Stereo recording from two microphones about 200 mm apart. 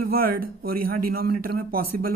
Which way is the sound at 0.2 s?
45° right (ahead or behind).